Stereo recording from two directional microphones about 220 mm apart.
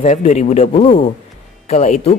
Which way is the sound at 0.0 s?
35° left (ahead or behind).